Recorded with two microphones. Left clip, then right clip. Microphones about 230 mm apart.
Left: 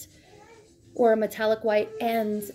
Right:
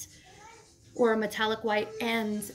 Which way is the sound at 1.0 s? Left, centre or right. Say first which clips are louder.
Left 4 dB; centre.